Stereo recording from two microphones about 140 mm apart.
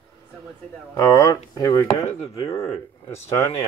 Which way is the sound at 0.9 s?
20° left (ahead or behind).